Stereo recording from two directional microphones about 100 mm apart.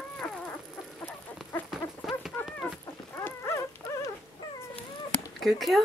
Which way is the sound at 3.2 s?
25° left (ahead or behind).